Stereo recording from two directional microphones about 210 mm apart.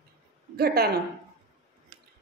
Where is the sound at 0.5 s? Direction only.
45° right (ahead or behind).